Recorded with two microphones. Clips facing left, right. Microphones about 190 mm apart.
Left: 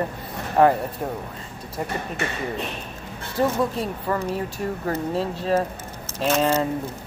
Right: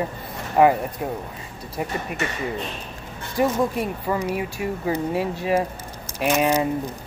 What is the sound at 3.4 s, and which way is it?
Speech, 10° right (ahead or behind).